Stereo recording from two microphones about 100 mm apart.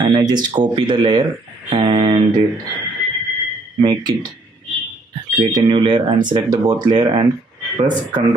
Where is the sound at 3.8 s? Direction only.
45° right (ahead or behind).